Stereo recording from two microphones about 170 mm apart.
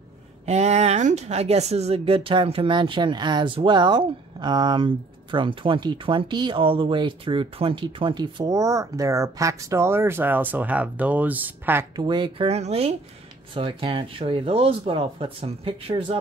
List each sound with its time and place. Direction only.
0.5 s speech: 40° right (ahead or behind); by 11.8 s 10° right (ahead or behind)
11.9 s speech: 25° right (ahead or behind)
12.4 s speech: 40° right (ahead or behind)